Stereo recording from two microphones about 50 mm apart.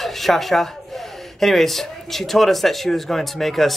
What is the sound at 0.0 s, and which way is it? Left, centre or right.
Speech, centre.